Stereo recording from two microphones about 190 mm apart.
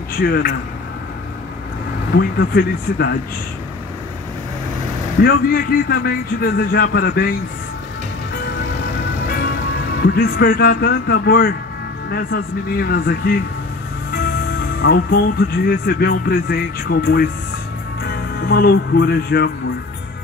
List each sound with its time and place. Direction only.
0.2 s speech: 55° left (ahead or behind)
2.1 s speech: 60° left (ahead or behind)
5.2 s speech: 55° left (ahead or behind)
10.0 s speech: 55° left (ahead or behind)
14.8 s speech: 60° left (ahead or behind)
18.0 s music: 55° left (ahead or behind)